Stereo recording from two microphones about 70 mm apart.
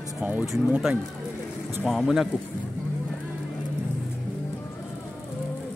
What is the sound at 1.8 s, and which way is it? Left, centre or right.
Speech, centre.